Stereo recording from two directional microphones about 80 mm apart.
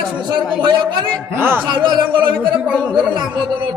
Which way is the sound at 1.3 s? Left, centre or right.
Right.